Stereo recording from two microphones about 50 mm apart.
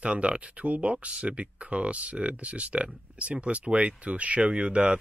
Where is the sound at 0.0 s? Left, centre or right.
Right.